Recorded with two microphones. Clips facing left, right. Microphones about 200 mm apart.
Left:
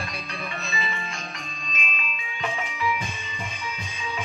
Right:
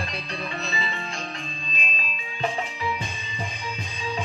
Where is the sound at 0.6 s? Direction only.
30° right (ahead or behind).